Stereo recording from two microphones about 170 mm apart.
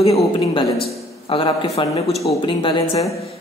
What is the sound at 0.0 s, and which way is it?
Speech, 35° left (ahead or behind).